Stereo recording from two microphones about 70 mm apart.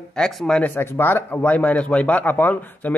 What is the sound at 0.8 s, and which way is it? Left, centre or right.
Speech, left.